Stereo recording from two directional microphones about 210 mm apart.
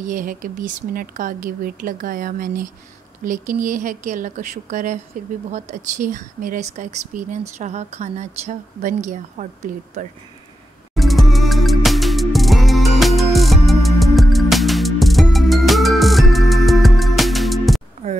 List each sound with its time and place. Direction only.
0.0 s speech: 40° right (ahead or behind)
11.0 s music: centre (ahead or behind)